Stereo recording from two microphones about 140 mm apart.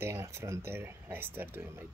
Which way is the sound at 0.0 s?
20° right (ahead or behind).